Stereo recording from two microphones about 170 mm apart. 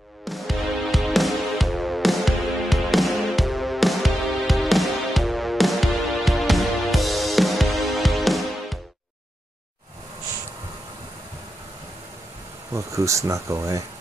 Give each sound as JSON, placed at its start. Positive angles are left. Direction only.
{"t": 0.2, "sound": "music", "side_deg": 0}
{"t": 12.7, "sound": "speech", "side_deg": -20}